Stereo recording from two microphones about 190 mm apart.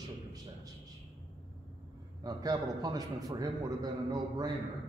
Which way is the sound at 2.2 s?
20° right (ahead or behind).